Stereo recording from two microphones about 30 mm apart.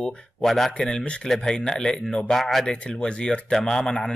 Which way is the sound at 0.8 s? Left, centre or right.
Left.